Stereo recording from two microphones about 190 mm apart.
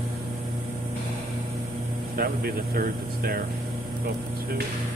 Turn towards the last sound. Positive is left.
turn(degrees=-50)  # may be behind; listen again after turning